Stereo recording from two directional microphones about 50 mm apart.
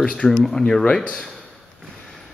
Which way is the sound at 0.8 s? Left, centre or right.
Left.